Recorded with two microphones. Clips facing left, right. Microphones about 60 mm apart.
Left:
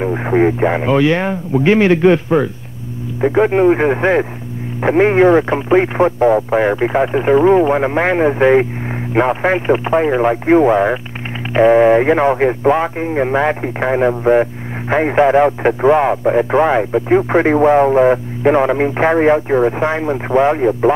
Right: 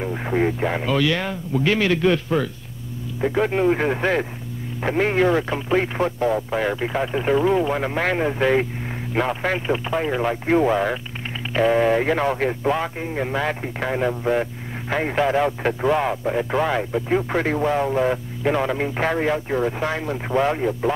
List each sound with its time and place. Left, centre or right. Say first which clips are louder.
0.0 s speech: left 8 dB; left